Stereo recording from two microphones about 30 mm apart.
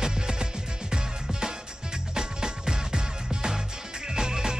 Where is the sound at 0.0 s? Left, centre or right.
Right.